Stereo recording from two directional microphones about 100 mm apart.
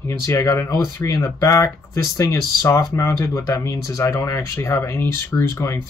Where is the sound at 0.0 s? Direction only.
30° left (ahead or behind).